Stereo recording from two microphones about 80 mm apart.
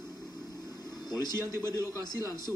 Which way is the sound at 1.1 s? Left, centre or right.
Left.